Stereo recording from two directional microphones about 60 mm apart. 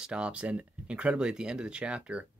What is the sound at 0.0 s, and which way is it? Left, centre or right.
Speech, centre.